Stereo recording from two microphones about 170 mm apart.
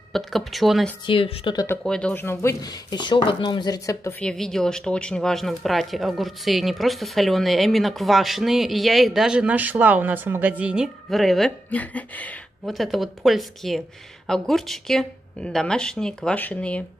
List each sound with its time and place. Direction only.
0.1 s speech: centre (ahead or behind)
1.0 s speech: 30° left (ahead or behind)
1.8 s speech: 5° left (ahead or behind)
4.2 s speech: 5° left (ahead or behind)